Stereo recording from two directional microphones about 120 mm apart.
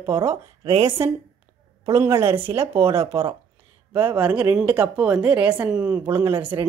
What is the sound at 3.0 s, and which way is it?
Speech, 55° right (ahead or behind).